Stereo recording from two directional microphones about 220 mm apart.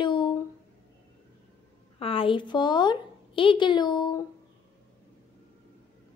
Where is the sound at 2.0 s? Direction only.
25° left (ahead or behind).